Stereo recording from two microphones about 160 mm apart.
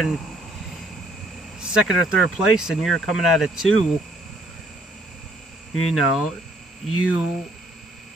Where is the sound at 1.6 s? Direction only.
5° right (ahead or behind).